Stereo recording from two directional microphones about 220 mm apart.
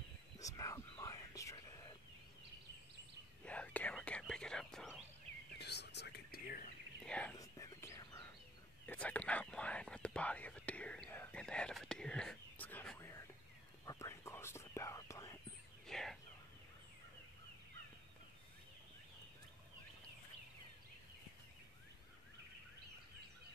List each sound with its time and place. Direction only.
0.4 s whispering: 15° left (ahead or behind)
3.4 s whispering: 5° left (ahead or behind)
5.6 s whispering: 50° left (ahead or behind)
7.1 s speech: 5° left (ahead or behind)
7.3 s whispering: 15° left (ahead or behind)
8.8 s speech: 5° left (ahead or behind)
13.8 s whispering: 15° left (ahead or behind)
15.9 s bird: centre (ahead or behind)